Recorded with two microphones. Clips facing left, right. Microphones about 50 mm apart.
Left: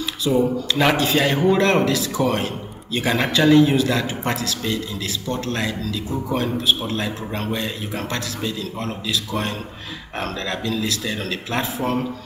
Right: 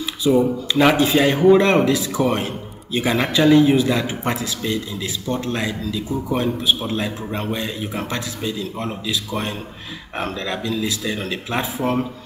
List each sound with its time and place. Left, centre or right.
0.2 s speech: centre
0.9 s a man's voice: centre